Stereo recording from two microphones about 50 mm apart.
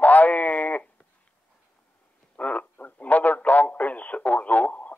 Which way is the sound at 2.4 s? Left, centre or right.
Left.